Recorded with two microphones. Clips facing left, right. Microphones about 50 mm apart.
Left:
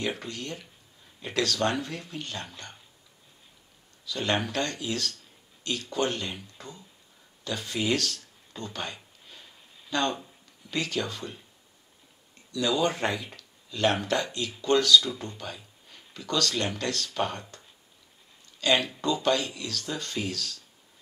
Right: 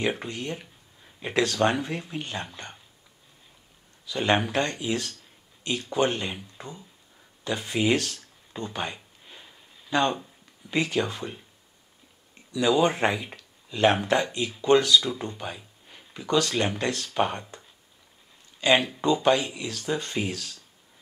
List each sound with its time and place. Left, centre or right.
0.0 s speech: right
4.0 s speech: right
7.4 s a sound: right
10.7 s speech: right
12.4 s speech: centre